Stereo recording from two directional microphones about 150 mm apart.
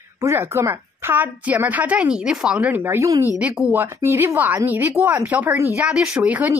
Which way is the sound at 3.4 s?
5° right (ahead or behind).